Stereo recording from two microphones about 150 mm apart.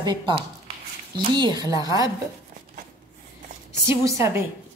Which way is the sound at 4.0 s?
20° right (ahead or behind).